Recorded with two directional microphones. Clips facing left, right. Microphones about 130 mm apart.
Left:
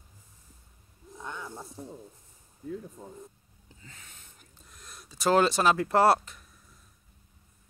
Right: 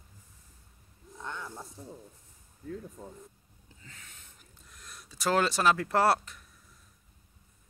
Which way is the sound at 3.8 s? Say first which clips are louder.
Left 1 dB; 25° left (ahead or behind).